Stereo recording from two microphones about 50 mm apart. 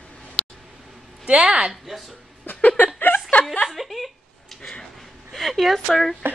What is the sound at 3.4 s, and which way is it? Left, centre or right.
Chuckle, centre.